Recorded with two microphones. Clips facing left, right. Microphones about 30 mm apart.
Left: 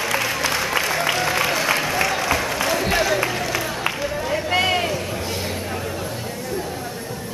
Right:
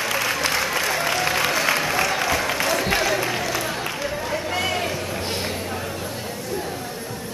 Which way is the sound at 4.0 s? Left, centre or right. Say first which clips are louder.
Left 2 dB; centre.